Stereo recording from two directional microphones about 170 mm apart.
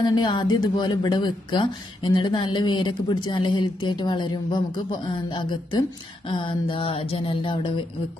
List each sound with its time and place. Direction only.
0.0 s a woman's voice: 25° left (ahead or behind)